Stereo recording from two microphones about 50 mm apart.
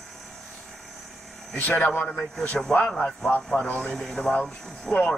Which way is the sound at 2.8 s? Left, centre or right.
Centre.